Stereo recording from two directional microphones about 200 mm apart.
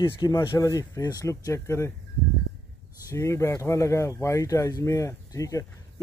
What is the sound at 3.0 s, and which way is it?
Speech, 15° left (ahead or behind).